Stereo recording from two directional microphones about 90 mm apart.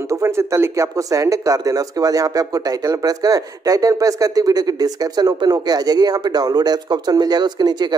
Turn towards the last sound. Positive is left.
turn(degrees=-50)  # may be behind; listen again after turning